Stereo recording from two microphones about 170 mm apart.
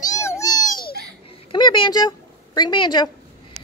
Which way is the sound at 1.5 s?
25° left (ahead or behind).